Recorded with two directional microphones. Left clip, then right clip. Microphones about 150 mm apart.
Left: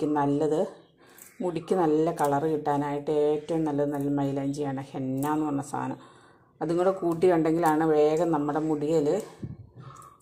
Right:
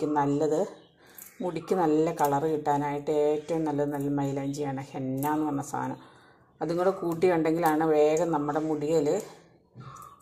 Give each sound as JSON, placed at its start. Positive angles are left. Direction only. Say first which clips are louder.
{"t": 0.0, "sound": "speech", "louder": "left 1 dB", "side_deg": 10}